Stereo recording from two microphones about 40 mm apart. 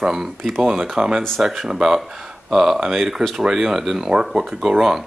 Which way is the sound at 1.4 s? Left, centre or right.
Centre.